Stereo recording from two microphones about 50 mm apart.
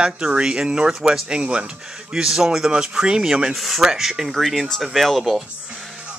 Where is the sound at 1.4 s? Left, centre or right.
Right.